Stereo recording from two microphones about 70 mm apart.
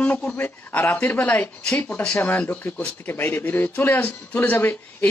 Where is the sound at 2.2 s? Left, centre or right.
Left.